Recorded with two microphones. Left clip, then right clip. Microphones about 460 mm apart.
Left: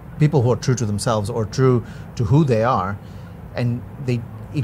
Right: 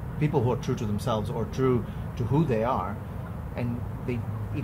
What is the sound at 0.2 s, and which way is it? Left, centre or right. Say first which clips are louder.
Speech: left 8 dB; left.